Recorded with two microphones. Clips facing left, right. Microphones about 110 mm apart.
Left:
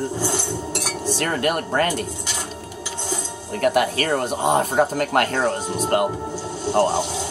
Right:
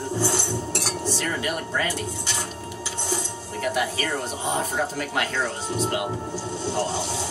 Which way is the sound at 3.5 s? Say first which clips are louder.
Left 7 dB; 60° left (ahead or behind).